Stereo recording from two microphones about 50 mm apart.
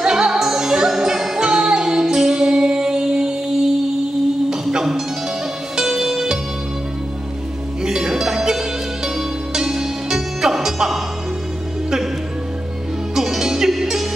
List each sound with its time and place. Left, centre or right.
0.0 s music: centre
7.8 s music: centre
13.1 s music: centre